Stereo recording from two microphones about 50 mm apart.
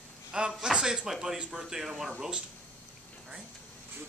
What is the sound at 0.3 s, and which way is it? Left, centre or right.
A man's voice, centre.